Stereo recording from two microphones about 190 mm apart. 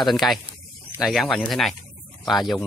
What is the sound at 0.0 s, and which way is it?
Speech, centre (ahead or behind).